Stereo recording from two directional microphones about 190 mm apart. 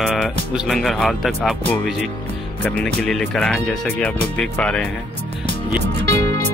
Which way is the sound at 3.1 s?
5° left (ahead or behind).